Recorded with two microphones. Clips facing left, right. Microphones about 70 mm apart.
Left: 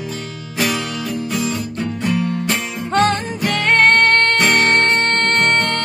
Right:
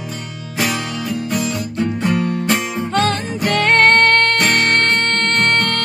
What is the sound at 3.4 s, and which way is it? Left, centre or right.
Music, centre.